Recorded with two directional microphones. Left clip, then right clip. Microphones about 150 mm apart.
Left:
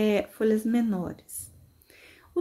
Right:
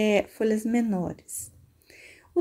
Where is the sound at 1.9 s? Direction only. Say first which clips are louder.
Right 3 dB; 25° right (ahead or behind).